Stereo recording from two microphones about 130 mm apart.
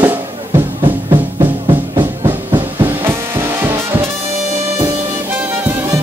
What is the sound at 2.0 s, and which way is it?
Music, 35° right (ahead or behind).